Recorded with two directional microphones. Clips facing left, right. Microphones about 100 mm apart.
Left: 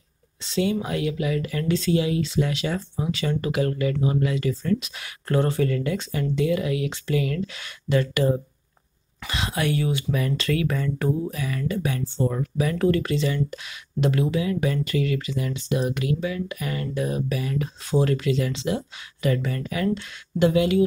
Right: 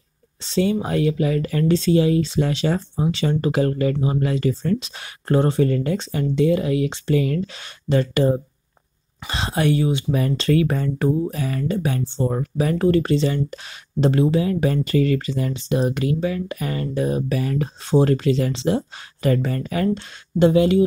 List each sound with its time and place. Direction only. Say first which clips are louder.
0.4 s speech: right 4 dB; 35° right (ahead or behind)